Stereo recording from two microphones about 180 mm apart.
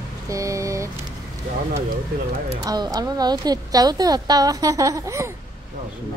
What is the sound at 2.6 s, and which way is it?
A woman's voice, 20° right (ahead or behind).